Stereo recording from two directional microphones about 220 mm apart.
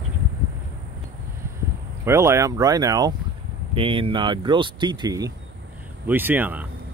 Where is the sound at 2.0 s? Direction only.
15° right (ahead or behind).